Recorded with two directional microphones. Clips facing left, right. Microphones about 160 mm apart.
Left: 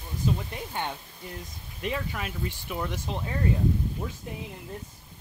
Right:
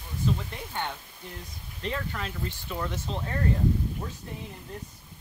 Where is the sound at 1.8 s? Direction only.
10° left (ahead or behind).